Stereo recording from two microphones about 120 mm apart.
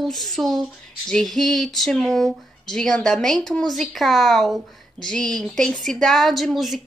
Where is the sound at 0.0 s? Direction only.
Centre (ahead or behind).